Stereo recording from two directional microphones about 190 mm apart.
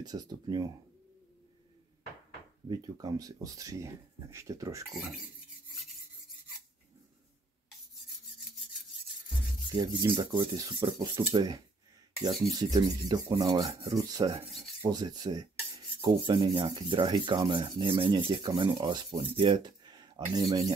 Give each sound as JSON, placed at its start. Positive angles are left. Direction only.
{"t": 0.0, "sound": "rub", "side_deg": -20}
{"t": 2.7, "sound": "speech", "side_deg": -20}
{"t": 9.7, "sound": "rub", "side_deg": -20}